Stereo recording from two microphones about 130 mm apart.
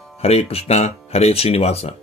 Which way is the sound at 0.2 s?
50° left (ahead or behind).